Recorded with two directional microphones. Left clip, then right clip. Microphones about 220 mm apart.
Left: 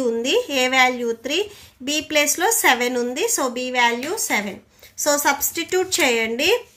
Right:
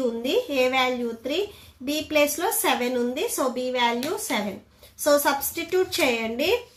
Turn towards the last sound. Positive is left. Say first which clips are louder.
# left 5 dB
turn(degrees=35)  # may be behind; listen again after turning